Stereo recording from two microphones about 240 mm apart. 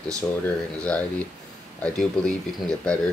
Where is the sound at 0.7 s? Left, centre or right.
Centre.